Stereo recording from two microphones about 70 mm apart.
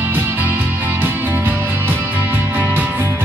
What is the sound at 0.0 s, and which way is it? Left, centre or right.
Music, right.